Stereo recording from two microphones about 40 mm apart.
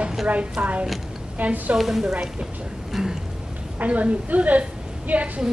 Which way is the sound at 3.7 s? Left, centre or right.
Right.